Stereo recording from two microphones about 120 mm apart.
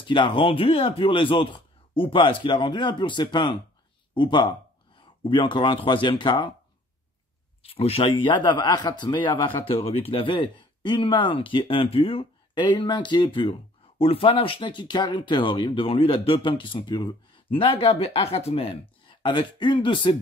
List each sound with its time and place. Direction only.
0.0 s speech: 45° left (ahead or behind)
7.6 s speech: 55° left (ahead or behind)